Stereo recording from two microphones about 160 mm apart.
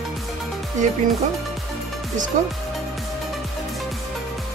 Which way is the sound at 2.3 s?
50° right (ahead or behind).